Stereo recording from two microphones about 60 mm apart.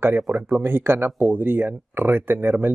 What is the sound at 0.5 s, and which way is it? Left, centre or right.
Speech, right.